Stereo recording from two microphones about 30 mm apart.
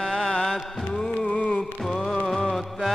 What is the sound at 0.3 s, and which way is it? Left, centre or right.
Music, left.